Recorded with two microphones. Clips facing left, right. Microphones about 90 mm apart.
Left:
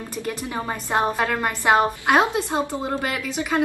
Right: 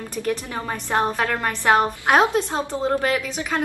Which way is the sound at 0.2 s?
15° left (ahead or behind).